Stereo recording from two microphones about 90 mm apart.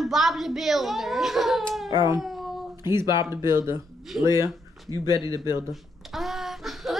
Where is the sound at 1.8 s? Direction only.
55° left (ahead or behind).